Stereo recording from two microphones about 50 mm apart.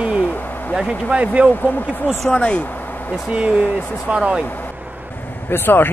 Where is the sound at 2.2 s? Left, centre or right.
Left.